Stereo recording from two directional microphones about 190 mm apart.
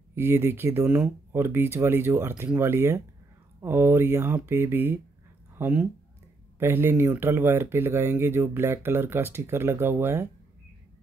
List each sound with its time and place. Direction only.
0.1 s speech: 10° right (ahead or behind)